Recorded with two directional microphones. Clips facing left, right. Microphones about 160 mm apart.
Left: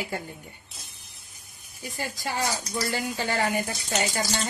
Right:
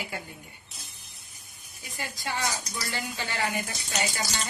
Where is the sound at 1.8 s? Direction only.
40° left (ahead or behind).